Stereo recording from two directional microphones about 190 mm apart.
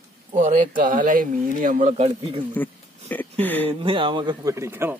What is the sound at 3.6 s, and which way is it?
A man's voice, 30° right (ahead or behind).